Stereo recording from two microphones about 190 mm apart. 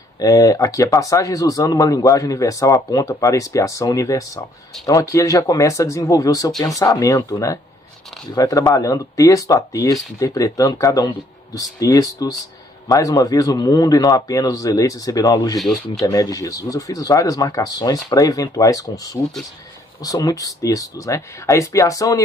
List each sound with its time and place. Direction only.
0.2 s speech: 15° left (ahead or behind)